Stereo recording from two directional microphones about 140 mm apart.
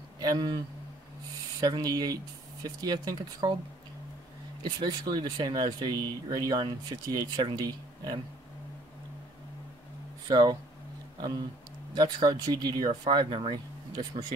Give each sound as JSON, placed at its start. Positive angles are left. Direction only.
{"t": 0.2, "sound": "a man's voice", "side_deg": -30}
{"t": 1.6, "sound": "speech", "side_deg": -30}
{"t": 4.6, "sound": "speech", "side_deg": -30}
{"t": 10.2, "sound": "speech", "side_deg": -30}
{"t": 11.9, "sound": "speech", "side_deg": -30}